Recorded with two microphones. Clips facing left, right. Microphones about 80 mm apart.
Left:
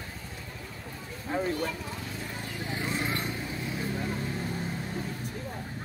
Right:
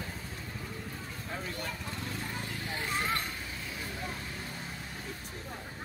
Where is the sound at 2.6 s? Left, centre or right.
Centre.